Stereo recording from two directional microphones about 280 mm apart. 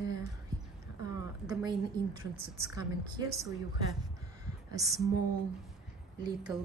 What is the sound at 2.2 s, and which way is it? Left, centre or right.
A woman's voice, centre.